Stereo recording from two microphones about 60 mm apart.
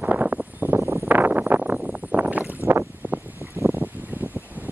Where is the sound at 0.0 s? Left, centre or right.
Right.